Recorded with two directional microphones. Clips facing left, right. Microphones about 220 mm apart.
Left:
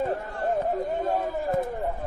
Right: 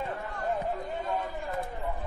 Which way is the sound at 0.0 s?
40° left (ahead or behind).